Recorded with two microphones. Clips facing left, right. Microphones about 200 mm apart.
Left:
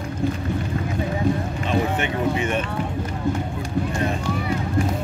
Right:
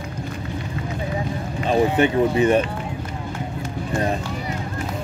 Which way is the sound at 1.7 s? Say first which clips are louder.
Right 6 dB; 35° right (ahead or behind).